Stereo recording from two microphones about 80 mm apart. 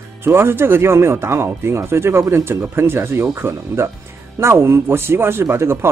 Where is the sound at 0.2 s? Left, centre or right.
Right.